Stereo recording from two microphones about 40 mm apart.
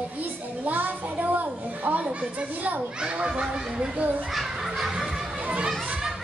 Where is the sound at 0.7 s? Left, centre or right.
Right.